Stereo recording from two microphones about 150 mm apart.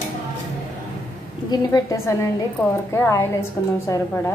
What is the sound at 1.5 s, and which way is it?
A woman's voice, 20° left (ahead or behind).